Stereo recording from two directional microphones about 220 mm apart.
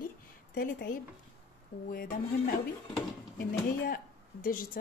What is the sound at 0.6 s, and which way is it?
A woman's voice, 40° left (ahead or behind).